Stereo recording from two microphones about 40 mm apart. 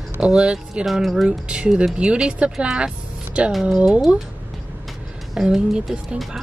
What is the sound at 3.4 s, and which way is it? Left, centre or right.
Speech, right.